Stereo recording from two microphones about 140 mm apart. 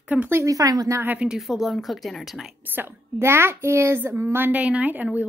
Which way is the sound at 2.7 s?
15° right (ahead or behind).